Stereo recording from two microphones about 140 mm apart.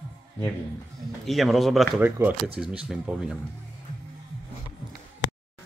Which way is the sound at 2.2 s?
15° right (ahead or behind).